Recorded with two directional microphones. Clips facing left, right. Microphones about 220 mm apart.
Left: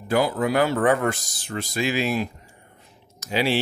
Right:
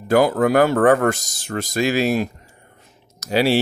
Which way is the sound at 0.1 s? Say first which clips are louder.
Right 6 dB; 50° right (ahead or behind).